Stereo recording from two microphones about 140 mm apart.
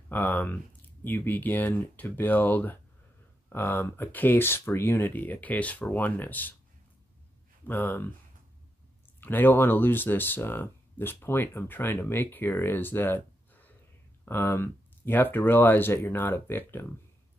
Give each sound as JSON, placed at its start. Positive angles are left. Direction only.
{"t": 0.1, "sound": "speech", "side_deg": 15}
{"t": 7.6, "sound": "speech", "side_deg": 15}
{"t": 9.2, "sound": "speech", "side_deg": 15}